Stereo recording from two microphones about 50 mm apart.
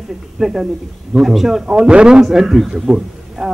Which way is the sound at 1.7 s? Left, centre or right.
Right.